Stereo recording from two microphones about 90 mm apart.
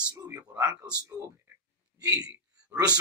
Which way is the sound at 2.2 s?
15° right (ahead or behind).